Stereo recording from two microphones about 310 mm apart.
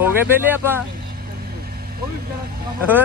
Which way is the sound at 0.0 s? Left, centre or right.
Centre.